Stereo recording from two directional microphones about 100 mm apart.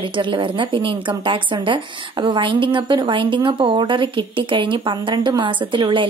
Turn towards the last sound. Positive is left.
turn(degrees=-55)  # may be behind; listen again after turning